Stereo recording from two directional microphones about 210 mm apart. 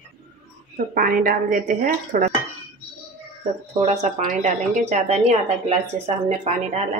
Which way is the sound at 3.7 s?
30° right (ahead or behind).